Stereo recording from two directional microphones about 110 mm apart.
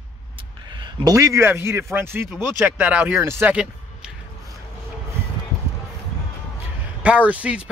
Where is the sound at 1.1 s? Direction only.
25° right (ahead or behind).